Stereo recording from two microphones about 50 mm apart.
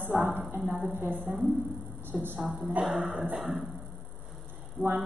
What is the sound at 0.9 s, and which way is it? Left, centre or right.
A woman's voice, right.